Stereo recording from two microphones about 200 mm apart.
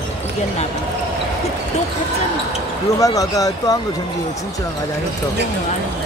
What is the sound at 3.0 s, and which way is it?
Speech, 15° left (ahead or behind).